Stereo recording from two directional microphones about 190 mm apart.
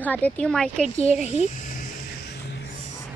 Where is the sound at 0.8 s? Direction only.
40° right (ahead or behind).